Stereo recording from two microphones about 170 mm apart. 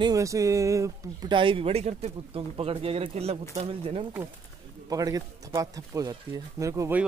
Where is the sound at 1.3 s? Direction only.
30° right (ahead or behind).